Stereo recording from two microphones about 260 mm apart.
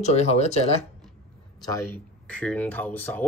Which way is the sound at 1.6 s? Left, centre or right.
Centre.